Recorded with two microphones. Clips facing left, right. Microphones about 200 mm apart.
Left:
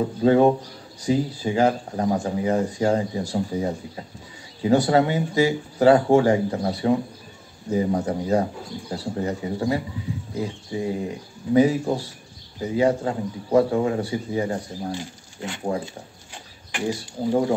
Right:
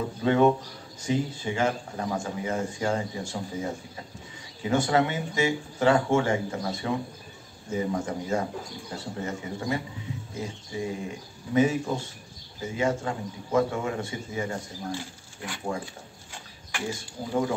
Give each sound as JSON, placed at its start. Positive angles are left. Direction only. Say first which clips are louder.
{"t": 0.2, "sound": "speech", "louder": "left 4 dB", "side_deg": 35}
{"t": 14.9, "sound": "speech", "louder": "left 3 dB", "side_deg": 20}
{"t": 16.8, "sound": "speech", "louder": "left 9 dB", "side_deg": 35}